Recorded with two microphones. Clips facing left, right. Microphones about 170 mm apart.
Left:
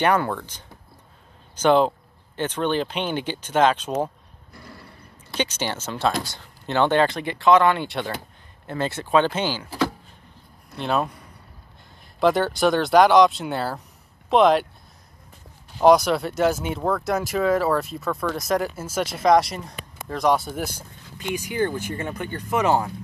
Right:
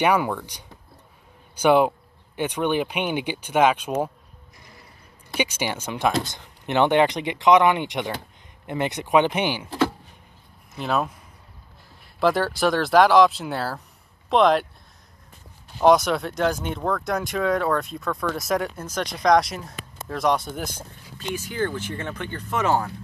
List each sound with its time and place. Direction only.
0.0 s speech: 10° right (ahead or behind)
4.6 s mechanisms: 65° left (ahead or behind)
5.3 s speech: 10° right (ahead or behind)
9.7 s a sound: centre (ahead or behind)
10.8 s speech: centre (ahead or behind)
12.2 s speech: centre (ahead or behind)
15.8 s speech: centre (ahead or behind)
21.4 s speech: 15° left (ahead or behind)